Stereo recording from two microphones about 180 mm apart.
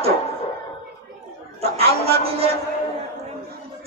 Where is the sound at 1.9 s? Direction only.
35° right (ahead or behind).